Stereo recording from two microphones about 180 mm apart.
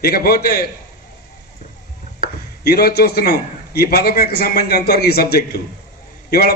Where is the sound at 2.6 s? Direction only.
60° left (ahead or behind).